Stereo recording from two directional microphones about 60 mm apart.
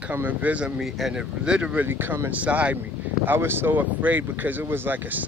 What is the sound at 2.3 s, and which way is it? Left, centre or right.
Speech, right.